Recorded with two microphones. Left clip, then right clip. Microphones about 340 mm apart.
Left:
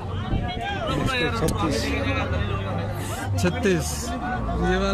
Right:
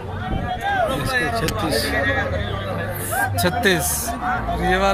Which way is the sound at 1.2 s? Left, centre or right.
Centre.